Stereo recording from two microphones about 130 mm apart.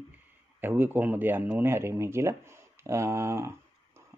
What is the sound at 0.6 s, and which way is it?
Speech, 15° right (ahead or behind).